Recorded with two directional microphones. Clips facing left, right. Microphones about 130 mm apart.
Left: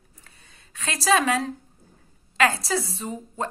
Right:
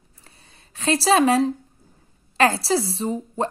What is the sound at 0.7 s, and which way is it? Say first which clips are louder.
A woman's voice: right 4 dB; 30° right (ahead or behind).